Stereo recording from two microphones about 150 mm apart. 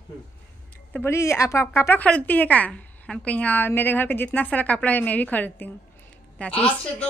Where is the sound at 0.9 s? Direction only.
15° left (ahead or behind).